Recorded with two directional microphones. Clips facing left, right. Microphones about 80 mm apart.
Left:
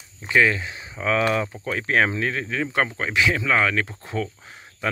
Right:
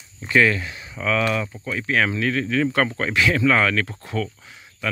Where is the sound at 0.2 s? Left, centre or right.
Centre.